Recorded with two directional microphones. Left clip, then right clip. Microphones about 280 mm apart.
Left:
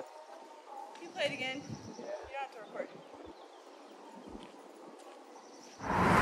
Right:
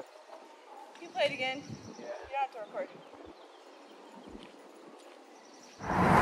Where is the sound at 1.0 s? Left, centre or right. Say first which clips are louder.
Right 5 dB; centre.